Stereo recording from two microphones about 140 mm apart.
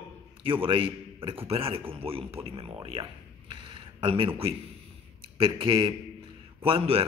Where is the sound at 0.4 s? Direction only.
40° right (ahead or behind).